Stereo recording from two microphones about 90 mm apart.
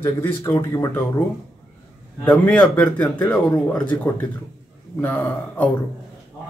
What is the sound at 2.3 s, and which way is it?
A man's voice, 10° left (ahead or behind).